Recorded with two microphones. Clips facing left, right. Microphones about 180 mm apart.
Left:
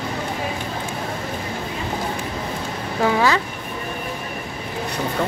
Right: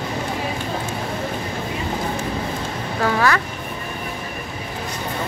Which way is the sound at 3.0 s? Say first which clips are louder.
Left 1 dB; 15° left (ahead or behind).